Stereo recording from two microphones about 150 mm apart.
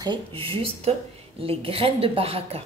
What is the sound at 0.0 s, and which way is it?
A woman's voice, 35° right (ahead or behind).